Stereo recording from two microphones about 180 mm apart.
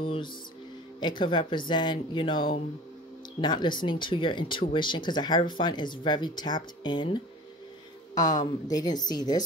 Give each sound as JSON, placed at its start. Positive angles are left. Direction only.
{"t": 0.0, "sound": "music", "side_deg": 30}
{"t": 1.0, "sound": "speech", "side_deg": 25}